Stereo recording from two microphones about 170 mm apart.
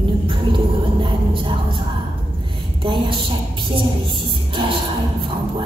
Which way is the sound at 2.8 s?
30° right (ahead or behind).